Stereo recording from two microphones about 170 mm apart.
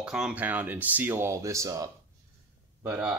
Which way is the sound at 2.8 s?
10° right (ahead or behind).